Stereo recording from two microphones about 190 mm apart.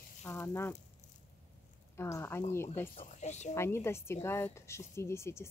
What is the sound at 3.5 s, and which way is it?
Speech, 15° left (ahead or behind).